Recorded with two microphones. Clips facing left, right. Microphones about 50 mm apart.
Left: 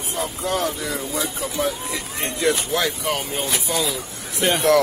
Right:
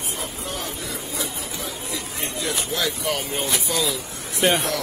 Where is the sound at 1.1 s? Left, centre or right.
Left.